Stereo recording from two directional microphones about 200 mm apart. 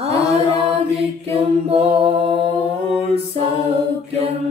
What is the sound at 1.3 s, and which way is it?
Mantra, 30° right (ahead or behind).